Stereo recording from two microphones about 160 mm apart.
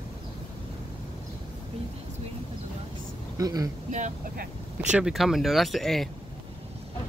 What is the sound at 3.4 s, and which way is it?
Speech, 20° right (ahead or behind).